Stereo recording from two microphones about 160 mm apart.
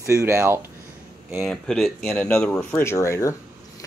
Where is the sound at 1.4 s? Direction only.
Centre (ahead or behind).